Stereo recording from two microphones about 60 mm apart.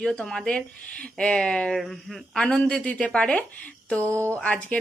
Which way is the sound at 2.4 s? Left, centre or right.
Centre.